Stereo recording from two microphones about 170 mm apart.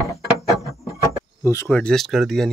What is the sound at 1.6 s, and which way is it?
Speech, 5° left (ahead or behind).